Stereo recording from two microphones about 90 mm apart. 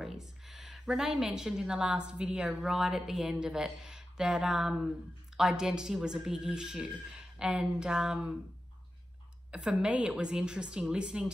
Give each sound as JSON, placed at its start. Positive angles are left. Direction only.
{"t": 0.0, "sound": "a woman's voice", "side_deg": -5}
{"t": 9.5, "sound": "a woman's voice", "side_deg": -10}